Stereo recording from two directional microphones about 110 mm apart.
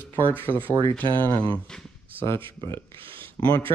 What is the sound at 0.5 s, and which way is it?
Speech, 15° left (ahead or behind).